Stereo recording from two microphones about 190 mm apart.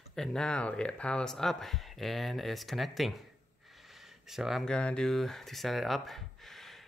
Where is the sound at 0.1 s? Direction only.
5° left (ahead or behind).